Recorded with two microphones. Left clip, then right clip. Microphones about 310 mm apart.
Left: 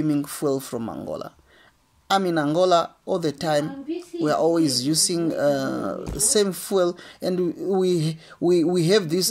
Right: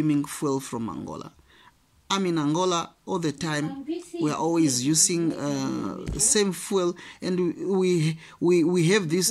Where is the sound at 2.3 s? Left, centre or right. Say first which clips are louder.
Left 7 dB; centre.